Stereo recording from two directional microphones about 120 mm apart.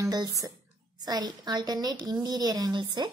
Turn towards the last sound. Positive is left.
turn(degrees=-40)  # may be behind; listen again after turning